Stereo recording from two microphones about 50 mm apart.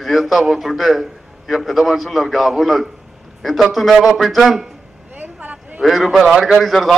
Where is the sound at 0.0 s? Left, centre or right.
Centre.